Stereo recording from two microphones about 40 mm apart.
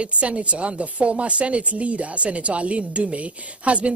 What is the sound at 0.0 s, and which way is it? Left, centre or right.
A woman's voice, right.